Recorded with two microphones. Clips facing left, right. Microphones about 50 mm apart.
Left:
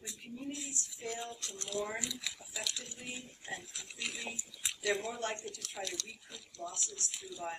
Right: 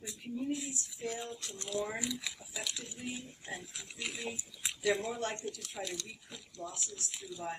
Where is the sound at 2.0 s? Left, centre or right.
Centre.